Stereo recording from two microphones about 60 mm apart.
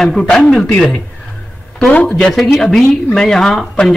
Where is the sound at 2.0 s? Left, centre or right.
Centre.